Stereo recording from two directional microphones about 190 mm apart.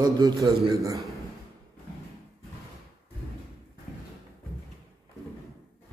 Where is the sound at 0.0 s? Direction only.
20° right (ahead or behind).